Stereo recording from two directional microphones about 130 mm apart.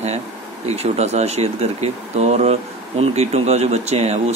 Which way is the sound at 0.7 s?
55° right (ahead or behind).